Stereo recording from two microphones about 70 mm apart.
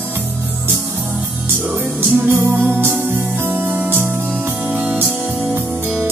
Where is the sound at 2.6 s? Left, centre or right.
Right.